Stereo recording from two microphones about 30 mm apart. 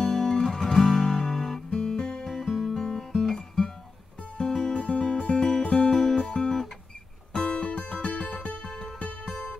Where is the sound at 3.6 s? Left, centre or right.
Left.